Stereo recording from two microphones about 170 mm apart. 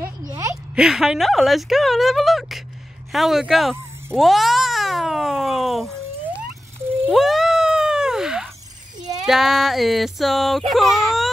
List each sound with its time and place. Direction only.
0.3 s a sound: 15° right (ahead or behind)
0.7 s speech: 5° right (ahead or behind)
4.1 s cat: centre (ahead or behind)
7.1 s a sound: centre (ahead or behind)
9.2 s speech: centre (ahead or behind)
10.7 s whimper: centre (ahead or behind)